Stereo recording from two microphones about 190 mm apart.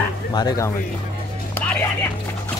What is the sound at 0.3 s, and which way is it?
Speech, 20° left (ahead or behind).